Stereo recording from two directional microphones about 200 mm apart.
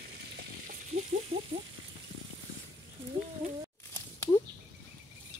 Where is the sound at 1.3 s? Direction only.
30° right (ahead or behind).